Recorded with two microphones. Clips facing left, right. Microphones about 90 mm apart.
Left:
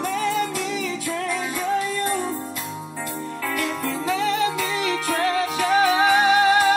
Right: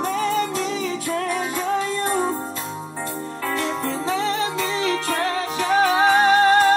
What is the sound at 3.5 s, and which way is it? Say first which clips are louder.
Music: right 2 dB; 30° right (ahead or behind).